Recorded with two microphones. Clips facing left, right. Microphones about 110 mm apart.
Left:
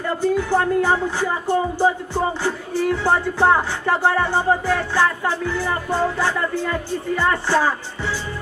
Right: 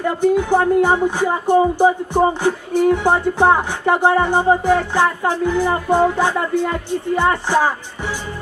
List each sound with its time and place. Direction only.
0.2 s music: 20° right (ahead or behind)